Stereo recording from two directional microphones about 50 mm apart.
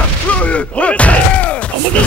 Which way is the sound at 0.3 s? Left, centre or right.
Left.